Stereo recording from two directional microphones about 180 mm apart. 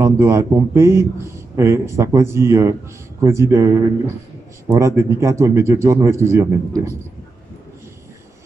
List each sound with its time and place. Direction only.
0.0 s speech: 15° right (ahead or behind)